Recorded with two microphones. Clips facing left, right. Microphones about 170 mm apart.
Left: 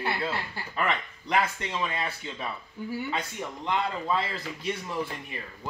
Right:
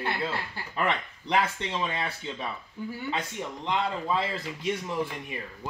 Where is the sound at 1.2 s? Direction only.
25° right (ahead or behind).